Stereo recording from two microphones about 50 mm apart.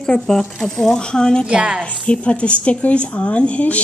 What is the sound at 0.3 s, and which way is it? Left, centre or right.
Speech, centre.